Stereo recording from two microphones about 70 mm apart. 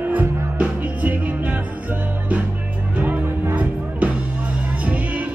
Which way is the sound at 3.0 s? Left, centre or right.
Right.